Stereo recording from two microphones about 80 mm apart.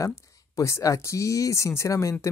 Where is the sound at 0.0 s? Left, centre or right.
Left.